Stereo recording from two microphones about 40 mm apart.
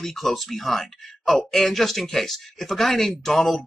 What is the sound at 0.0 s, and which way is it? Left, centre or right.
Speech, centre.